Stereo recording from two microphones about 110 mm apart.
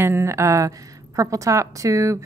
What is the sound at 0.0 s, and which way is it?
A woman's voice, 25° right (ahead or behind).